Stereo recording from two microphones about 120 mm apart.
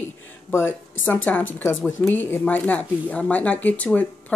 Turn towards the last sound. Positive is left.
turn(degrees=10)  # may be behind; listen again after turning